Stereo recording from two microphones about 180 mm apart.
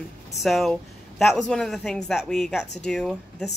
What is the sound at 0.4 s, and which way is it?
Speech, centre (ahead or behind).